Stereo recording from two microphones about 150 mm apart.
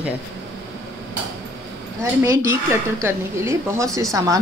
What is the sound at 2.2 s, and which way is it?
A woman's voice, 20° right (ahead or behind).